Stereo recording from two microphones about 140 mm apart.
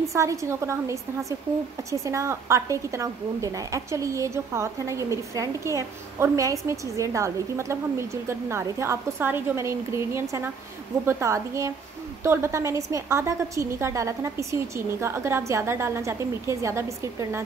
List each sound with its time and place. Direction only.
0.1 s a woman's voice: 20° right (ahead or behind)